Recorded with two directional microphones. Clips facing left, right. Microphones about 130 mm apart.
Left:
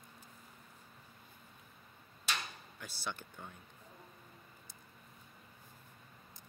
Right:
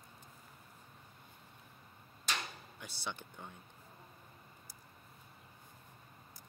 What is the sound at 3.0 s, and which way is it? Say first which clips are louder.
Speech: left 1 dB; 20° right (ahead or behind).